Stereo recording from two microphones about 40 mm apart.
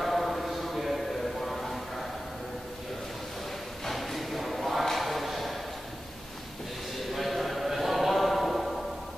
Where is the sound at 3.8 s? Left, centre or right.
Centre.